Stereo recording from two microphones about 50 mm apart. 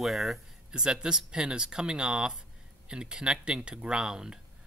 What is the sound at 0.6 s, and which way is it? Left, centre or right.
Speech, centre.